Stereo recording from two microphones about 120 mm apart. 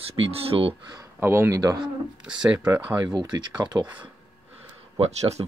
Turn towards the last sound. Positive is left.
turn(degrees=-65)  # may be behind; listen again after turning